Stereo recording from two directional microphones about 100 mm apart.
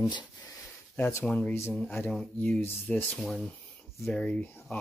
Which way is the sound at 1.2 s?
15° left (ahead or behind).